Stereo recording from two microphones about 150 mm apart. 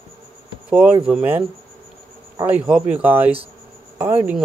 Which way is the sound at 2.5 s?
10° right (ahead or behind).